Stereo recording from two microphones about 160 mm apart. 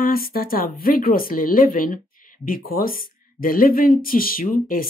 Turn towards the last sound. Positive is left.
turn(degrees=60)  # may be behind; listen again after turning